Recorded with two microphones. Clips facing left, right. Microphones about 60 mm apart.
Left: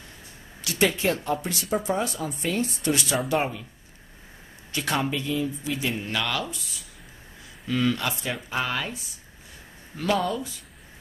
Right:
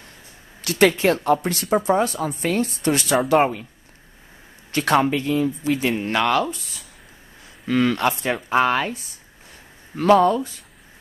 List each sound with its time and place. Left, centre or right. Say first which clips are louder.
0.6 s speech: right 7 dB; right
4.7 s speech: right 8 dB; right
7.6 s speech: right 6 dB; right